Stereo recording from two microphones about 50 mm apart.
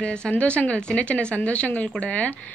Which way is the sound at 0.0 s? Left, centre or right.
Centre.